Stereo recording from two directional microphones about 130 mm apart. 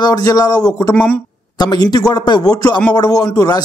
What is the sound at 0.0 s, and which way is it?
Speech, 30° left (ahead or behind).